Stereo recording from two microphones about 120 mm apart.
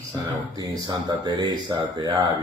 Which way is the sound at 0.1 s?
35° right (ahead or behind).